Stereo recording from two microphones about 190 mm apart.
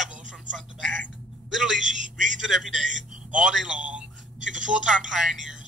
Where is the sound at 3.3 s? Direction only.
5° right (ahead or behind).